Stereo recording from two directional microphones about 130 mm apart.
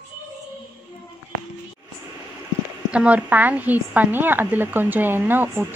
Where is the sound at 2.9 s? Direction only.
10° right (ahead or behind).